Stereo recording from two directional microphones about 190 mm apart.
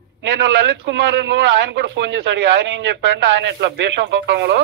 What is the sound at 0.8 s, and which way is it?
Speech, 70° right (ahead or behind).